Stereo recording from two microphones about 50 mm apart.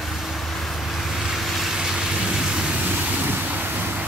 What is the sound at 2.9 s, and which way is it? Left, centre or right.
Waves, right.